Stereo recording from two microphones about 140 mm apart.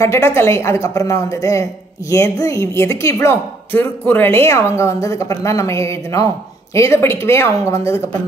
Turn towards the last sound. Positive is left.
turn(degrees=20)  # may be behind; listen again after turning